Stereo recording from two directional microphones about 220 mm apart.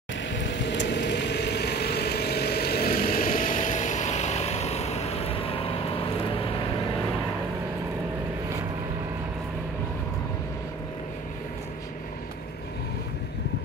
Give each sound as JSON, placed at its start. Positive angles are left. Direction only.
{"t": 0.3, "sound": "vehicle", "side_deg": 55}